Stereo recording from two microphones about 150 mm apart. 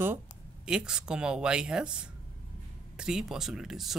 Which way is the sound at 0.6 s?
5° right (ahead or behind).